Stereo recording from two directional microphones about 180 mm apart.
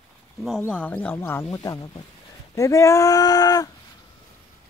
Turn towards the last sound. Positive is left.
turn(degrees=20)  # may be behind; listen again after turning